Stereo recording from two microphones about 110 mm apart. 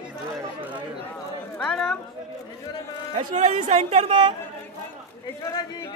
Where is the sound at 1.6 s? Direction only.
5° left (ahead or behind).